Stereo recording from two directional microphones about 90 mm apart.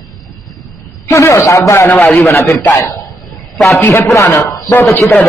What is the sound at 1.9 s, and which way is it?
Speech, 15° left (ahead or behind).